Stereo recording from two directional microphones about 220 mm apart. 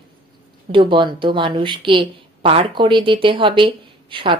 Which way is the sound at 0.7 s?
20° right (ahead or behind).